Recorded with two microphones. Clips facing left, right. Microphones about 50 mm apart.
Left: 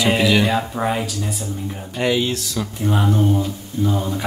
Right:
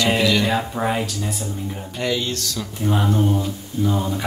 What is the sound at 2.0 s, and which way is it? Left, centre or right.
Speech, centre.